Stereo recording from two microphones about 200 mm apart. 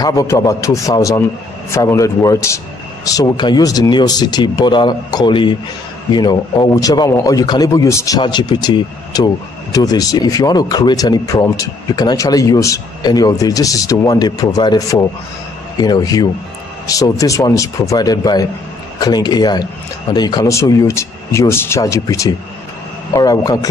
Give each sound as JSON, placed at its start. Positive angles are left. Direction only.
{"t": 0.0, "sound": "speech", "side_deg": 15}